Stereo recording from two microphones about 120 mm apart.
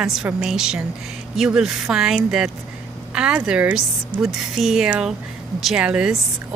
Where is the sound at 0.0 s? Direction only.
5° right (ahead or behind).